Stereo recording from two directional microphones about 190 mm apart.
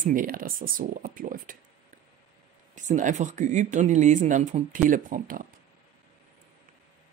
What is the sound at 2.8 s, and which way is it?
Speech, 40° right (ahead or behind).